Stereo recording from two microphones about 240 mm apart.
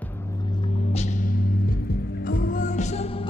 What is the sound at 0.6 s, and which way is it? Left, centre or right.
Music, left.